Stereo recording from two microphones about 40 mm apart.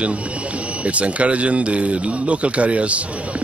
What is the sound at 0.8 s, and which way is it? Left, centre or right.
Speech, right.